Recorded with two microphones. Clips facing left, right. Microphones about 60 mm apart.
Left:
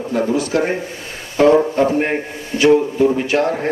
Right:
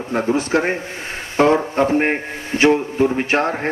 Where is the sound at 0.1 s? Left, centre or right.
Right.